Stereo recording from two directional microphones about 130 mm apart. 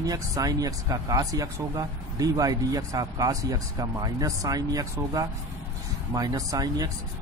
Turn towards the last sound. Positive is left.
turn(degrees=-30)  # may be behind; listen again after turning